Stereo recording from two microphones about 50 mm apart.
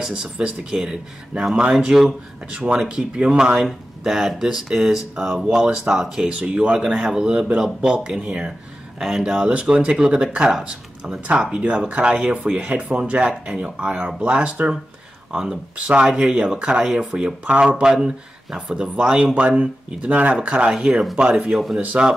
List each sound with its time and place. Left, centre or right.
0.0 s speech: centre
2.5 s speech: right
2.8 s speech: centre
7.9 s speech: right
9.0 s speech: centre
9.5 s speech: right
19.4 s speech: right
20.7 s speech: centre
21.7 s speech: centre